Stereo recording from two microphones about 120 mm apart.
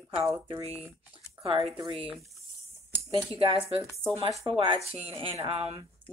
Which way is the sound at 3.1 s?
50° right (ahead or behind).